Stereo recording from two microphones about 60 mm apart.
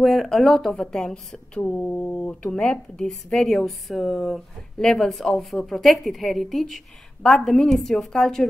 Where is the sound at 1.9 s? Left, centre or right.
Left.